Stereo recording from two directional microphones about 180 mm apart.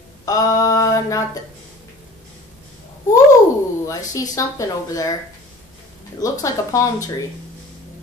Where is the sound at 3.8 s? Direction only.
20° left (ahead or behind).